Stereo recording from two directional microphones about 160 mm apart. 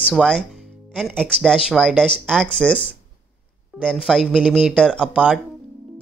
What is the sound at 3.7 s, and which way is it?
Speech, 5° right (ahead or behind).